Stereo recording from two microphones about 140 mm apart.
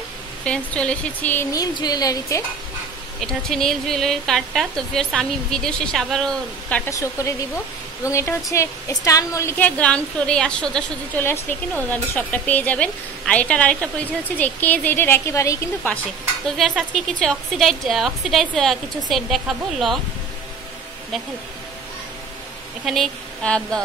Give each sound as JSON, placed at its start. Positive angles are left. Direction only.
{"t": 0.5, "sound": "a woman's voice", "side_deg": 10}
{"t": 1.5, "sound": "speech", "side_deg": 30}
{"t": 3.4, "sound": "a woman's voice", "side_deg": 5}
{"t": 6.9, "sound": "a woman's voice", "side_deg": 25}
{"t": 16.4, "sound": "a woman's voice", "side_deg": 0}
{"t": 22.8, "sound": "a woman's voice", "side_deg": 5}